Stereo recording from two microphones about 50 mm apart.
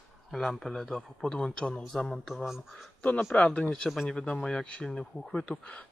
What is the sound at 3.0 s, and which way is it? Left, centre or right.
Speech, left.